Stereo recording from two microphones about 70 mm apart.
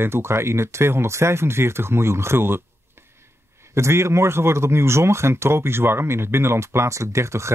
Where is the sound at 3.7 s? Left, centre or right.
Right.